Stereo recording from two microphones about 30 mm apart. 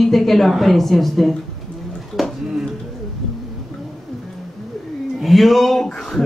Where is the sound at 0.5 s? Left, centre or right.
Centre.